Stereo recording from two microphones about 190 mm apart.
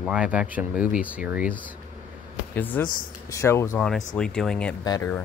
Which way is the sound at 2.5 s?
10° left (ahead or behind).